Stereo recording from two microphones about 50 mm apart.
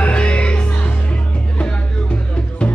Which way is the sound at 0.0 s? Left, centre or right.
Left.